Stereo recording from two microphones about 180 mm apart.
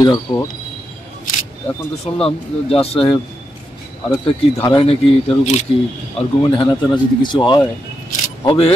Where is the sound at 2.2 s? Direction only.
30° left (ahead or behind).